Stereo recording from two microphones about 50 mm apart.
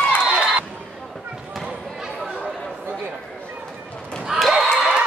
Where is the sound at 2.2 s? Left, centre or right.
Right.